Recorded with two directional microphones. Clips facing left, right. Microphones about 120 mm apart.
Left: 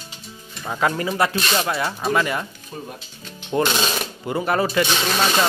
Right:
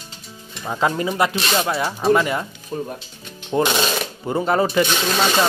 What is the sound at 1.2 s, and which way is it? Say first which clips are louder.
Speech: right 1 dB; 20° right (ahead or behind).